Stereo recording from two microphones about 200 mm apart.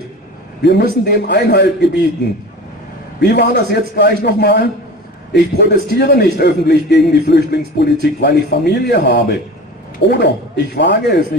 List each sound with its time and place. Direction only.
0.6 s a man's voice: 55° left (ahead or behind)
3.2 s a man's voice: 55° left (ahead or behind)